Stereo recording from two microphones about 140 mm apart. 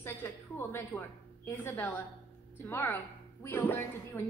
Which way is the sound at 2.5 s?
15° left (ahead or behind).